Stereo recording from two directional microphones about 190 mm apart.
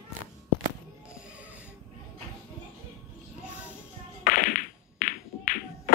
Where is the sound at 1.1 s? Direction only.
5° right (ahead or behind).